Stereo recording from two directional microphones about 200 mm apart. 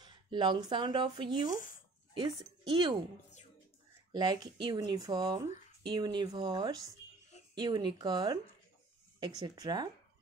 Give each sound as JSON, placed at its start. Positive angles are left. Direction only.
{"t": 0.0, "sound": "speech", "side_deg": -25}
{"t": 4.1, "sound": "speech", "side_deg": -20}